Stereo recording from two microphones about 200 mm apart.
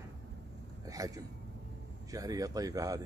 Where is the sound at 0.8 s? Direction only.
15° right (ahead or behind).